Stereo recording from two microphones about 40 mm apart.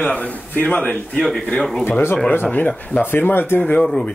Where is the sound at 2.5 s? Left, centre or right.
Left.